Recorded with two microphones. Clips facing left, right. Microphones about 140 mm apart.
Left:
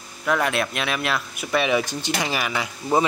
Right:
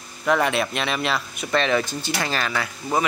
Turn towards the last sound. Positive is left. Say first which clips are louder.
# left 2 dB
turn(degrees=15)  # may be behind; listen again after turning